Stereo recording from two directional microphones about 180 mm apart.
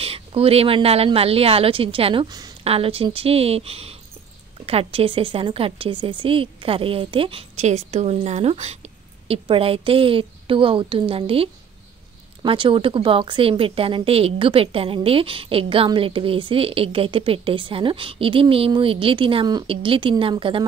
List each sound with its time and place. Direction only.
0.0 s a woman's voice: 30° right (ahead or behind)
2.6 s a woman's voice: 30° right (ahead or behind)
12.4 s a woman's voice: 30° right (ahead or behind)